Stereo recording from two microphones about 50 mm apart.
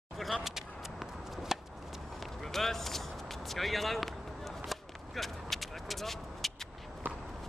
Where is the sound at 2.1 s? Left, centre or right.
Centre.